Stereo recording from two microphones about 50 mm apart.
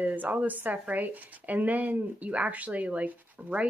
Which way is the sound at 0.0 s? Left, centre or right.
Right.